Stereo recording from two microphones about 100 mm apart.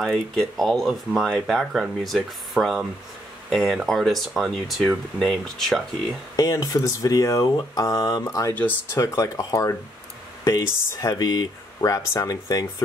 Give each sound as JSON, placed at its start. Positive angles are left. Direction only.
{"t": 0.0, "sound": "speech", "side_deg": 5}
{"t": 6.3, "sound": "speech", "side_deg": 35}